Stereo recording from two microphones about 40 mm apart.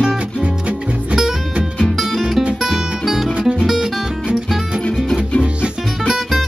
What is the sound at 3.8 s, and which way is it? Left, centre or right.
Music, right.